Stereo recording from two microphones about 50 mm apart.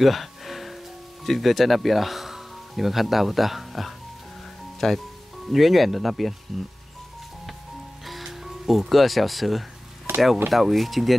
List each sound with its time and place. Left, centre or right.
0.0 s music: centre
1.2 s speech: centre
8.1 s music: centre
8.9 s speech: centre
10.1 s a sound: right
10.5 s speech: centre